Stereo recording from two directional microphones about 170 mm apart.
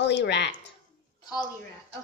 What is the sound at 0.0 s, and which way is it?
Speech, 90° left.